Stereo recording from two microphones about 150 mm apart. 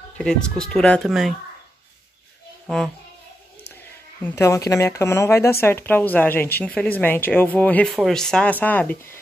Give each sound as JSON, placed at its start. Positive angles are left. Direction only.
{"t": 0.2, "sound": "speech", "side_deg": 5}
{"t": 2.6, "sound": "speech", "side_deg": 5}
{"t": 4.2, "sound": "speech", "side_deg": 20}